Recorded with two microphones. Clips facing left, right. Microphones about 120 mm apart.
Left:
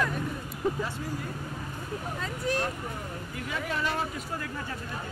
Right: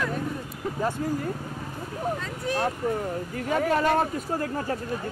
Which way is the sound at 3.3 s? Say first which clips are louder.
Right 9 dB; 45° right (ahead or behind).